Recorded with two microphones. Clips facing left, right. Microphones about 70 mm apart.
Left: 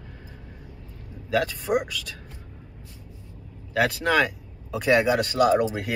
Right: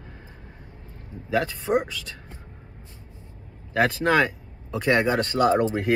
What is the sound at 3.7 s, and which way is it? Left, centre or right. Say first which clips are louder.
Speech: right 2 dB; centre.